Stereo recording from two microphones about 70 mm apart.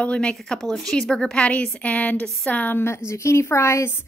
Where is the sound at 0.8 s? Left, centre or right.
Centre.